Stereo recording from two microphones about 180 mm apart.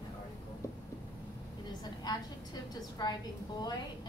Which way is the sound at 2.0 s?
25° left (ahead or behind).